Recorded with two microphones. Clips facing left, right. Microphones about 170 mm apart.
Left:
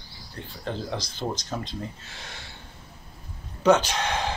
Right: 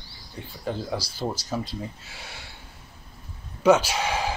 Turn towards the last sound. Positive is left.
turn(degrees=-5)  # may be behind; listen again after turning